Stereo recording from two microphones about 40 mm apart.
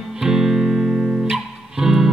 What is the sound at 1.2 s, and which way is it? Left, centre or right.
Music, centre.